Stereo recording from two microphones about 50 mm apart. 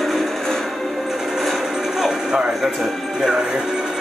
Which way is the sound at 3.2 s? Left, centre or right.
Centre.